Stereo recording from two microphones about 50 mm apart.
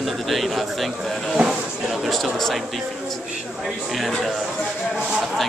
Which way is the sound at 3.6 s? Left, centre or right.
Centre.